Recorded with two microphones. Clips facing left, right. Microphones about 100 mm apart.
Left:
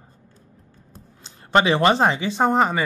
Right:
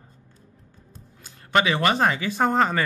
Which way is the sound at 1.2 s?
30° left (ahead or behind).